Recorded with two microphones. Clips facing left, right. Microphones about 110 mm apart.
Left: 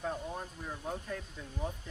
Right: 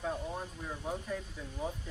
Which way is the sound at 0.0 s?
Centre (ahead or behind).